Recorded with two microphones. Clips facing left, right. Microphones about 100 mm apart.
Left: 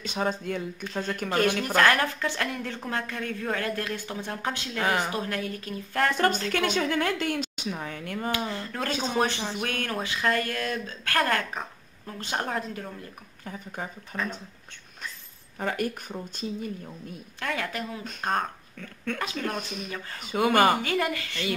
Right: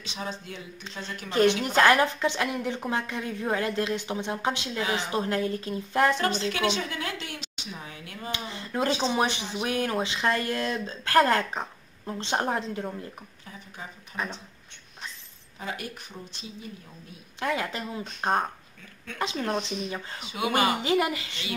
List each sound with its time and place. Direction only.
0.0 s a woman's voice: 50° left (ahead or behind)
1.3 s a woman's voice: 25° right (ahead or behind)
4.7 s a woman's voice: 50° left (ahead or behind)
5.1 s a woman's voice: 25° right (ahead or behind)
6.1 s a woman's voice: 50° left (ahead or behind)
8.3 s a woman's voice: 20° right (ahead or behind)
14.1 s speech: 55° left (ahead or behind)
15.6 s a woman's voice: 50° left (ahead or behind)
17.4 s a woman's voice: 20° right (ahead or behind)
20.2 s a woman's voice: 45° left (ahead or behind)
20.8 s a woman's voice: 20° right (ahead or behind)